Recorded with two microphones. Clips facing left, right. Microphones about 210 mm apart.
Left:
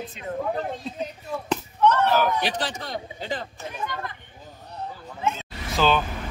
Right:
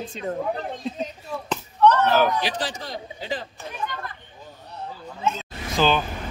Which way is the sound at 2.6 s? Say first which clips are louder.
Even; 60° left (ahead or behind).